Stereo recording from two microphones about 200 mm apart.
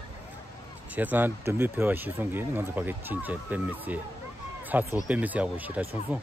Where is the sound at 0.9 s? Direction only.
10° right (ahead or behind).